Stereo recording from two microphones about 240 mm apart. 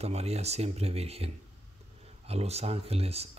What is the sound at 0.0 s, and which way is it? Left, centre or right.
Speech, right.